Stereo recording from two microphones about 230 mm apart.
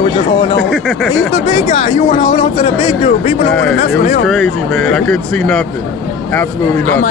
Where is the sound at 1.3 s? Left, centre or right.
Left.